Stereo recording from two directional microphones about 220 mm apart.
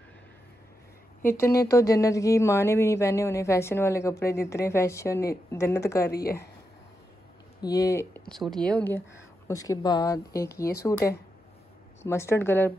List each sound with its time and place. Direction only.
1.2 s speech: 10° left (ahead or behind)
7.6 s speech: 15° left (ahead or behind)